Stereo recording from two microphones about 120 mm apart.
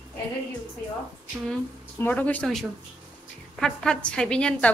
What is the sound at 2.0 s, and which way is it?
Speech, 15° left (ahead or behind).